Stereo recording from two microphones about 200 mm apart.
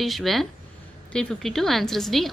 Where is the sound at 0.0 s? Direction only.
Centre (ahead or behind).